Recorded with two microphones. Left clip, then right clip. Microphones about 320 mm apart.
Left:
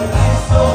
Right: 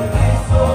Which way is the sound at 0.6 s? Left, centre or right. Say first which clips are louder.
Left 3 dB; left.